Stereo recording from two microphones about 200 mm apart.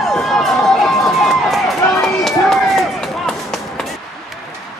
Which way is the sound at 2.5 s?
Centre (ahead or behind).